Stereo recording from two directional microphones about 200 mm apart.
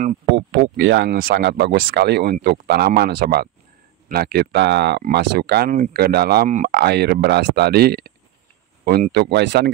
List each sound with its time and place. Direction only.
0.0 s speech: 40° right (ahead or behind)
0.7 s speech: 60° right (ahead or behind)